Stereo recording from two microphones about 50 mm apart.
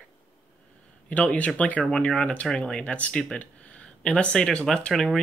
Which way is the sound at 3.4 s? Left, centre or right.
Left.